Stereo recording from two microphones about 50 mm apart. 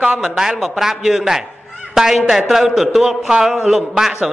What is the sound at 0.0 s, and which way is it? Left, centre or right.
Speech, centre.